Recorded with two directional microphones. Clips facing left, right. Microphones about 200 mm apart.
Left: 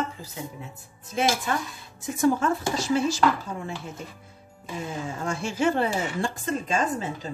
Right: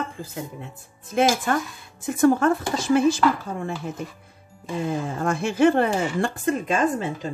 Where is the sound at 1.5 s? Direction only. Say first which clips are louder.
Right 4 dB; 50° right (ahead or behind).